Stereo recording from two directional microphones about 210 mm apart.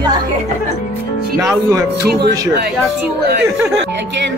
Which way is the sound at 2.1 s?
50° right (ahead or behind).